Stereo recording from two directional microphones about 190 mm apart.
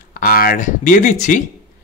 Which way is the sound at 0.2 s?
50° left (ahead or behind).